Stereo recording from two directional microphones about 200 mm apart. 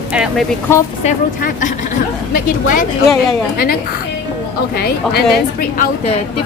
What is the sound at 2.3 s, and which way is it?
Speech, 45° left (ahead or behind).